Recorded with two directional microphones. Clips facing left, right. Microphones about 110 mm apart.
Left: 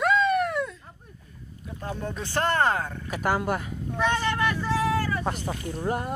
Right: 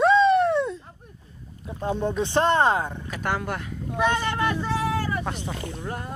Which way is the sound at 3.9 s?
15° right (ahead or behind).